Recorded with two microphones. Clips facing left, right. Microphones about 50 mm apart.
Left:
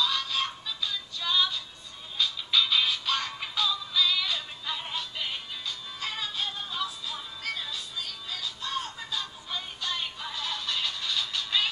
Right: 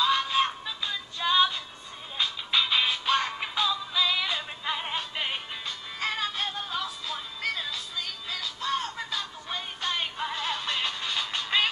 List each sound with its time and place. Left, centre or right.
0.0 s synthetic singing: right
2.1 s music: right
9.1 s music: right